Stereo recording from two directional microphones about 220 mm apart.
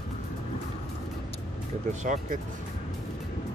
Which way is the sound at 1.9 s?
35° right (ahead or behind).